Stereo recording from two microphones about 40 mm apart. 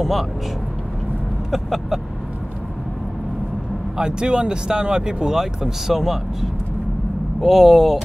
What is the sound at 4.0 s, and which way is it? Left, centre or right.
Speech, right.